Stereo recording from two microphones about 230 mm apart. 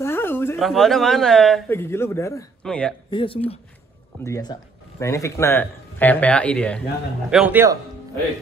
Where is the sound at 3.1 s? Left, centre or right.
Left; by 6.8 s centre.